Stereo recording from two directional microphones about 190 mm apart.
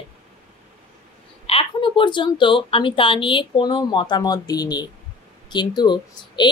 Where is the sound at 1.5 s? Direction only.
30° left (ahead or behind).